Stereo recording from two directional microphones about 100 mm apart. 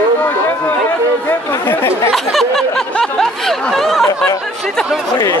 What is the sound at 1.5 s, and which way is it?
Speech, 25° left (ahead or behind).